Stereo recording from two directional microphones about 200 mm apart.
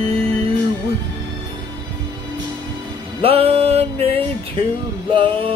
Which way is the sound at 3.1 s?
30° right (ahead or behind).